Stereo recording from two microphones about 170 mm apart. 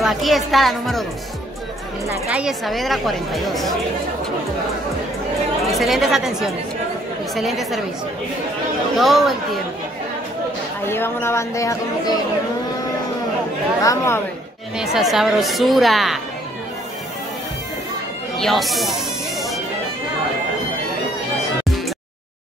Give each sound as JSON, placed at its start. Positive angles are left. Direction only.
{"t": 0.0, "sound": "speech", "side_deg": 0}
{"t": 2.0, "sound": "speech", "side_deg": -10}
{"t": 5.6, "sound": "speech", "side_deg": 0}
{"t": 8.9, "sound": "speech", "side_deg": 0}
{"t": 10.9, "sound": "speech", "side_deg": 15}
{"t": 13.8, "sound": "speech", "side_deg": 15}
{"t": 14.8, "sound": "speech", "side_deg": 0}
{"t": 18.4, "sound": "speech", "side_deg": 0}